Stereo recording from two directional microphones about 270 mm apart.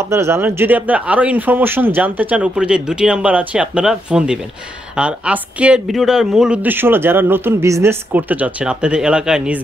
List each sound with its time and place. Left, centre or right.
0.0 s speech: centre